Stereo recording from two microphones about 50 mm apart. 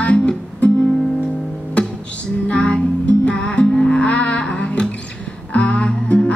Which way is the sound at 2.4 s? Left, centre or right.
Left.